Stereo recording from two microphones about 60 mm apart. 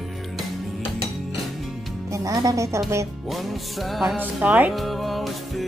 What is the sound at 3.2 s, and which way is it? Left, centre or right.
Music, centre.